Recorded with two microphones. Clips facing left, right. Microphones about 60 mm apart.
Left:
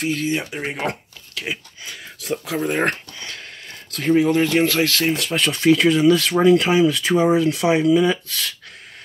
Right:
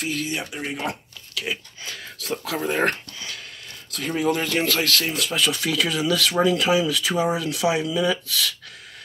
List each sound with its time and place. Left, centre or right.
0.0 s speech: left
1.3 s speech: left
3.2 s a sound: left
4.1 s speech: left
5.1 s speech: left